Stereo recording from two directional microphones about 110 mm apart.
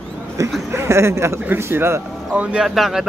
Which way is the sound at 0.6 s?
25° right (ahead or behind).